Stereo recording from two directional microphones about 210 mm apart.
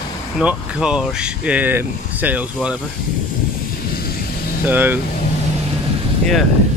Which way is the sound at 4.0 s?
45° left (ahead or behind).